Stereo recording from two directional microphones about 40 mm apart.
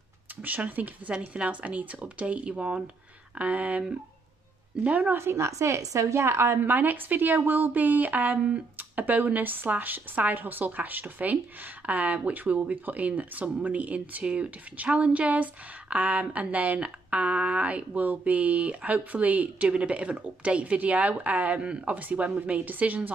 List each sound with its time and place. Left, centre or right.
0.6 s a woman's voice: right
4.8 s a woman's voice: right
6.1 s a woman's voice: right
6.6 s speech: right
8.4 s a woman's voice: right
8.7 s a woman's voice: right
14.2 s a woman's voice: right
22.5 s speech: right